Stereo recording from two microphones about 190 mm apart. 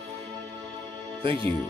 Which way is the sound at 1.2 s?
25° right (ahead or behind).